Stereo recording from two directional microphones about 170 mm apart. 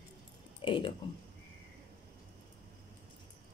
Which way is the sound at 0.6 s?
30° left (ahead or behind).